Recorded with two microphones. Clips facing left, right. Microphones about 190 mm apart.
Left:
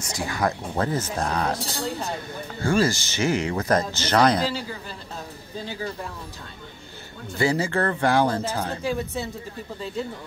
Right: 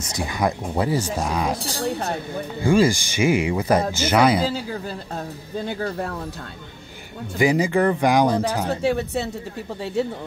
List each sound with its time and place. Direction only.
0.1 s speech: 15° right (ahead or behind)
2.6 s speech: 15° right (ahead or behind)
4.5 s a man's voice: 45° right (ahead or behind)
5.7 s speech: 60° right (ahead or behind)
7.3 s speech: 15° right (ahead or behind)
8.6 s speech: 70° right (ahead or behind)